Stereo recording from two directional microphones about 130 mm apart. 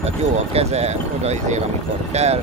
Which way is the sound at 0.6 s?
55° right (ahead or behind).